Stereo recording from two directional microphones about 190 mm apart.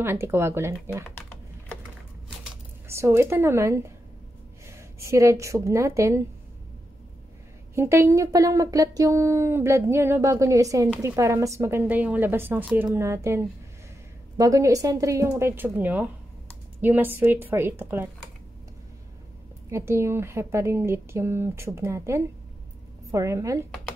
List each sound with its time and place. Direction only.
0.0 s speech: 10° right (ahead or behind)
2.9 s speech: 15° right (ahead or behind)
7.7 s speech: 15° right (ahead or behind)
19.7 s speech: 15° right (ahead or behind)